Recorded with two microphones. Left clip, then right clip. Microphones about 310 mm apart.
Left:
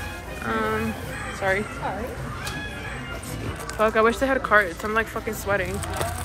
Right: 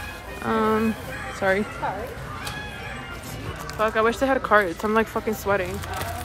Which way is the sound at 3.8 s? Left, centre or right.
Centre.